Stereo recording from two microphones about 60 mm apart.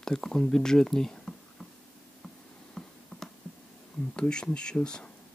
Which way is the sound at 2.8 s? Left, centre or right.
Centre.